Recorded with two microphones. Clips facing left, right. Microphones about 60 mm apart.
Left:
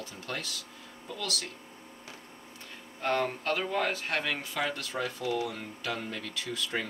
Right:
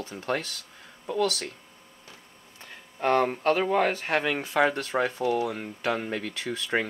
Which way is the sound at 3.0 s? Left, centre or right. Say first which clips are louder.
Right 7 dB; right.